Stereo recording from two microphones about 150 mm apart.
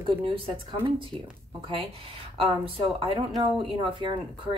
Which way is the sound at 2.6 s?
35° right (ahead or behind).